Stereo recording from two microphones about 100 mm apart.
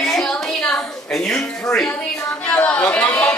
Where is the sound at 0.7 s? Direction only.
10° left (ahead or behind).